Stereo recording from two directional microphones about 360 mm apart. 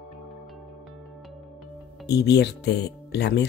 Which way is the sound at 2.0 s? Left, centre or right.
Left.